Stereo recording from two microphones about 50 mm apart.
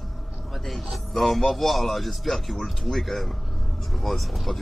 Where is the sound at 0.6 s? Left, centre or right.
Centre.